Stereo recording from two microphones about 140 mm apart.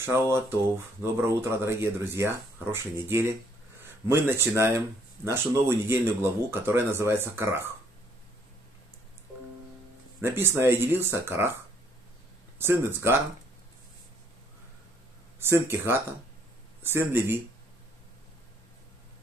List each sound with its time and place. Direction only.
0.0 s speech: 20° right (ahead or behind)
10.2 s speech: 15° right (ahead or behind)
12.5 s speech: 15° right (ahead or behind)
15.6 s speech: 15° right (ahead or behind)